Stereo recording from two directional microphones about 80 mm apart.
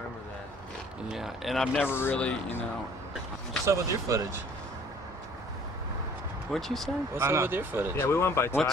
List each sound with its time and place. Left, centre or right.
1.0 s speech: centre
1.8 s speech: left
2.1 s speech: centre
3.6 s speech: right
6.5 s speech: centre
7.2 s speech: right
8.0 s speech: left